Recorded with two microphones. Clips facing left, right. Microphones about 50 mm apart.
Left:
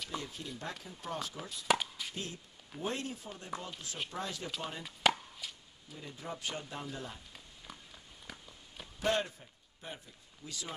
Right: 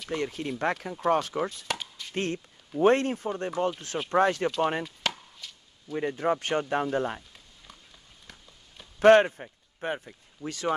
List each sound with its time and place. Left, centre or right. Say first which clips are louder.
0.1 s speech: right 16 dB; right
1.7 s chop: left 3 dB; centre
2.1 s speech: right 12 dB; right
5.0 s chop: left 5 dB; centre
5.4 s a sound: right 1 dB; centre
5.9 s speech: right 17 dB; right
8.3 s a sound: left 2 dB; centre
9.0 s speech: right 16 dB; right